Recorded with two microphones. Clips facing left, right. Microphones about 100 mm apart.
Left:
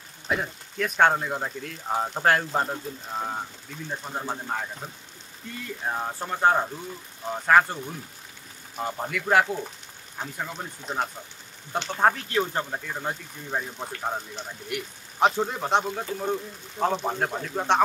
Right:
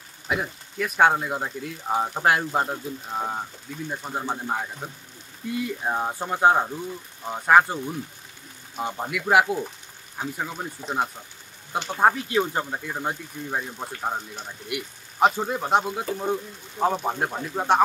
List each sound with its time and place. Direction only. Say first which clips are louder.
0.3 s speech: right 1 dB; 5° right (ahead or behind)